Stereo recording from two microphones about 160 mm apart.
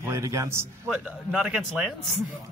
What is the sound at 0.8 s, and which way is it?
A man's voice, 5° right (ahead or behind).